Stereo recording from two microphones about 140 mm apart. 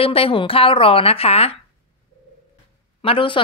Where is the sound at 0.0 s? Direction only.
40° left (ahead or behind).